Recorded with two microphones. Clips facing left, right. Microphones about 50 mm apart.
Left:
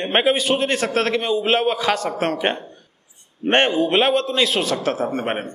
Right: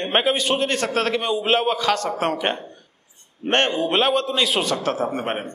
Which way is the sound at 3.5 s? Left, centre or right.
Centre.